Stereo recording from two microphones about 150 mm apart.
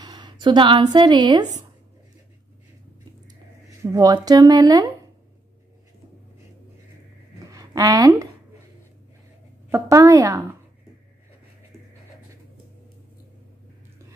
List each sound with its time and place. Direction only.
0.0 s speech: 30° right (ahead or behind)
3.8 s speech: 25° right (ahead or behind)
7.5 s a sound: 25° right (ahead or behind)
9.7 s speech: 20° right (ahead or behind)